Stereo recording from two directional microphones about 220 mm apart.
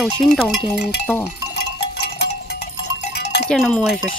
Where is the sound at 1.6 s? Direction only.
50° left (ahead or behind).